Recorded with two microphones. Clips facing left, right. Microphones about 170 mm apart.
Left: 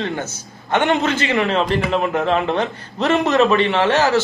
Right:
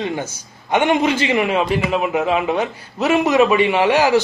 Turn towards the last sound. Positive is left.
turn(degrees=-15)  # may be behind; listen again after turning